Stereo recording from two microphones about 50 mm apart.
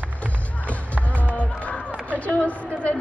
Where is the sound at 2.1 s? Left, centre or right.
Left.